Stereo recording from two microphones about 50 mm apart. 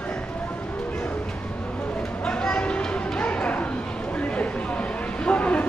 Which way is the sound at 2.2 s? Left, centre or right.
Left.